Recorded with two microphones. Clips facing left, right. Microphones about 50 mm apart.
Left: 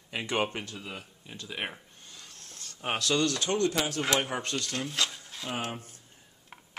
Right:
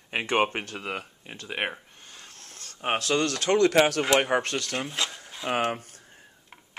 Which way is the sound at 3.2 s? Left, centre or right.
Right.